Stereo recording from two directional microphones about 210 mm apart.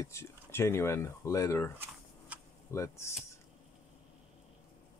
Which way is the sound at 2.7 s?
15° left (ahead or behind).